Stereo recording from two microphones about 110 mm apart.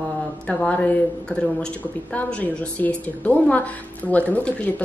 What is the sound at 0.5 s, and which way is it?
Speech, 10° left (ahead or behind).